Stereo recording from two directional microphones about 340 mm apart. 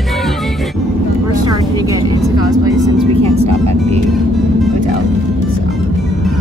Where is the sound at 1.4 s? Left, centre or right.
Centre.